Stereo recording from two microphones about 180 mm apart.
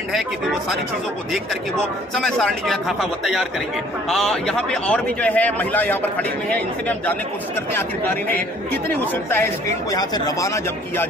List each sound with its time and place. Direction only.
2.1 s a man's voice: 5° left (ahead or behind)